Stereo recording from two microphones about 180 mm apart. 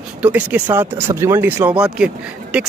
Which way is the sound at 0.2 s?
10° right (ahead or behind).